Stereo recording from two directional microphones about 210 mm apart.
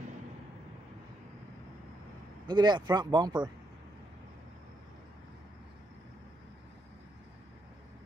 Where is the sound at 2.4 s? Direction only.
20° right (ahead or behind).